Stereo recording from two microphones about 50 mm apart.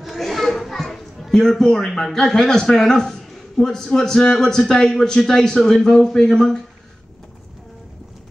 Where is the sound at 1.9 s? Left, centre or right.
Centre.